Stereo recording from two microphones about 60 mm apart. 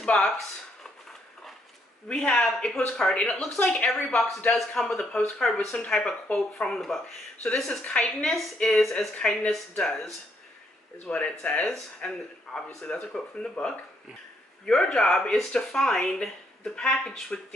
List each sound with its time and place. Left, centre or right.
0.0 s speech: centre
2.0 s speech: centre
5.4 s speech: centre
7.8 s speech: centre